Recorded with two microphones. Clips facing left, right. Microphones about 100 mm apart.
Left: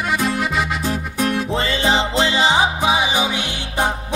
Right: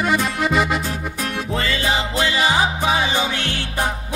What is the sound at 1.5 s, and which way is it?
Music, 30° left (ahead or behind).